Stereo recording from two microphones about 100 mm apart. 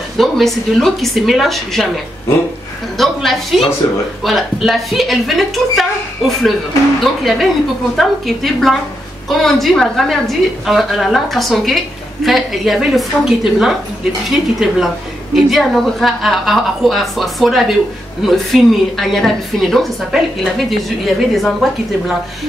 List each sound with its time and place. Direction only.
0.2 s a woman's voice: centre (ahead or behind)
3.0 s a woman's voice: centre (ahead or behind)
3.8 s speech: 35° left (ahead or behind)
4.2 s a woman's voice: centre (ahead or behind)